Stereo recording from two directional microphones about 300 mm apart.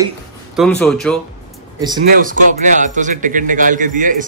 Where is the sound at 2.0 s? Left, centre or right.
Right.